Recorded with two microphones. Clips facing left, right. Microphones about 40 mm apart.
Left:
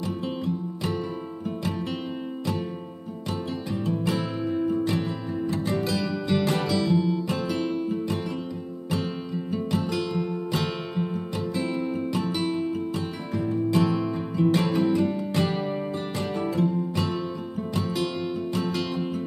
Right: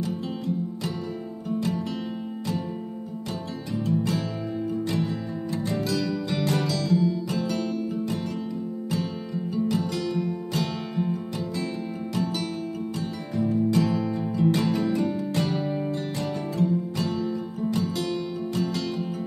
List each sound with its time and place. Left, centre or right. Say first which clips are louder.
3.8 s music: right 2 dB; left
5.5 s music: even; left
9.5 s music: right 2 dB; left
9.8 s music: even; centre